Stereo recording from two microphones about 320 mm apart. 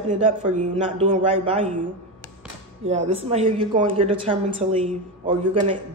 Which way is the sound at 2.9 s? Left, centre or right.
Centre.